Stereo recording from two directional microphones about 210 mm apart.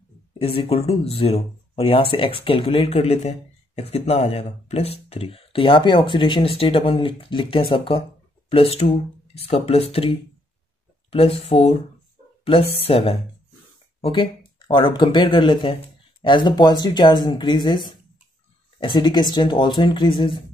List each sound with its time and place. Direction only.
0.3 s speech: 25° left (ahead or behind)